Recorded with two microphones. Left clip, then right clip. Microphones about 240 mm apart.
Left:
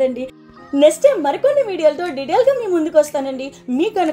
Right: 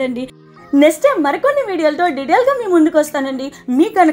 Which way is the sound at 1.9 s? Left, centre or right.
Right.